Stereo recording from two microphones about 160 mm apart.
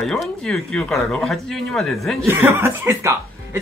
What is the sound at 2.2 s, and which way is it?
Speech, 15° right (ahead or behind).